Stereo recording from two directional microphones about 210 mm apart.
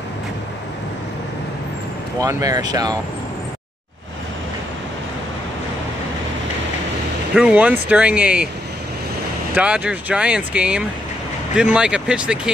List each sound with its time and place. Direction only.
2.1 s speech: 15° right (ahead or behind)
7.3 s speech: 5° right (ahead or behind)
9.6 s speech: 5° right (ahead or behind)